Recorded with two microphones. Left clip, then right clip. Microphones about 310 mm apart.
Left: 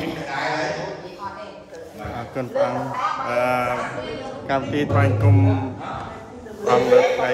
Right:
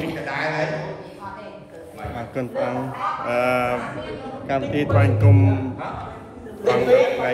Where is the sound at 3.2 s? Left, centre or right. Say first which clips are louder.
Right 2 dB; centre.